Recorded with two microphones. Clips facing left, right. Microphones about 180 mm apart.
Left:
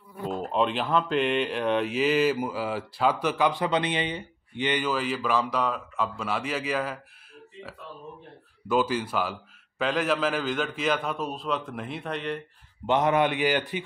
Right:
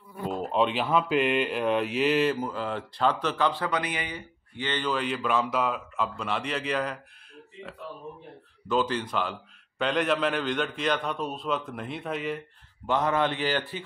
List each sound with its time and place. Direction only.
0.3 s speech: centre (ahead or behind)
8.6 s speech: 10° left (ahead or behind)
12.8 s a man's voice: 20° left (ahead or behind)